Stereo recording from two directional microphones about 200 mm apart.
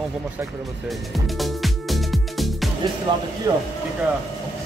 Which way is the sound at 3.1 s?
25° right (ahead or behind).